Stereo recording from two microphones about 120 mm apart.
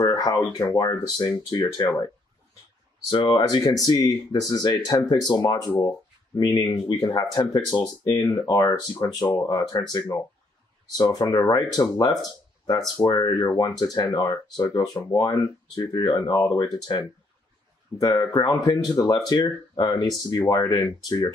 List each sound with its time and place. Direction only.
0.0 s speech: 35° left (ahead or behind)
3.1 s speech: 40° left (ahead or behind)